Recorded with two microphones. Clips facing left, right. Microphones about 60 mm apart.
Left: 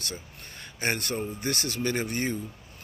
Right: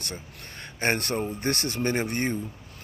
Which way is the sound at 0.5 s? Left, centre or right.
Right.